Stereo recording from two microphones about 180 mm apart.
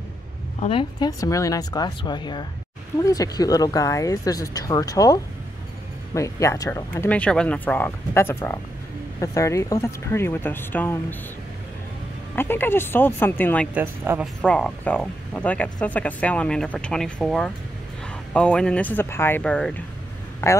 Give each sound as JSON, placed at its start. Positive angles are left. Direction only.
{"t": 0.6, "sound": "speech", "side_deg": 30}
{"t": 12.4, "sound": "speech", "side_deg": 10}
{"t": 13.7, "sound": "speech", "side_deg": -10}
{"t": 14.4, "sound": "speech", "side_deg": 5}